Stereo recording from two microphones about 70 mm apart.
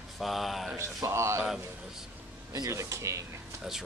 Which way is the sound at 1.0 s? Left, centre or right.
Right.